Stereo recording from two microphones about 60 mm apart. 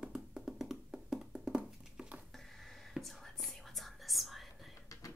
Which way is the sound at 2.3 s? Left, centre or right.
Centre.